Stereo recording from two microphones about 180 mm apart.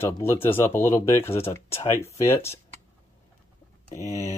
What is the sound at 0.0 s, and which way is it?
Speech, 15° left (ahead or behind).